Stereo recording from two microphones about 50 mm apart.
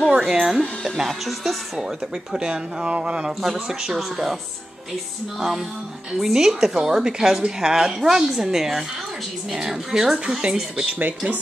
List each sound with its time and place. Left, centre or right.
0.1 s speech: centre
2.3 s a woman's voice: centre
6.1 s a woman's voice: centre
11.0 s speech: right